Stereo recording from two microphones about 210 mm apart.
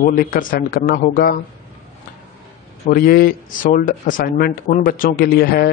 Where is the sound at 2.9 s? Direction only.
45° left (ahead or behind).